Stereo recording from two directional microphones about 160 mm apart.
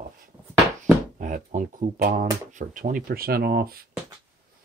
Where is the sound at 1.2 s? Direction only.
55° right (ahead or behind); by 3.9 s 70° right (ahead or behind).